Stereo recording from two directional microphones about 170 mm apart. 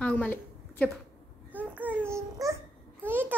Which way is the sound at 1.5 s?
10° right (ahead or behind).